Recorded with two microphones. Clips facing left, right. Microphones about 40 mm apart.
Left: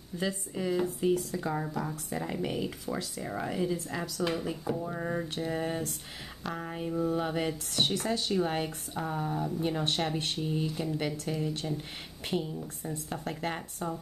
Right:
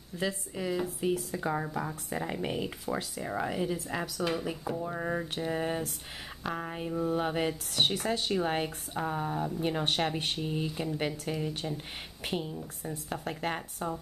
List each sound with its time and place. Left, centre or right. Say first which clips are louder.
0.2 s speech: even; centre
1.1 s speech: left 1 dB; centre
4.2 s speech: left 2 dB; centre